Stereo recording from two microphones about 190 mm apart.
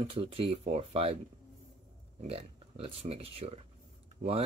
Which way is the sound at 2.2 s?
30° right (ahead or behind).